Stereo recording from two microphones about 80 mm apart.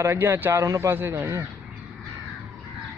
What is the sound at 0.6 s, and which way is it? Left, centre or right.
Speech, right.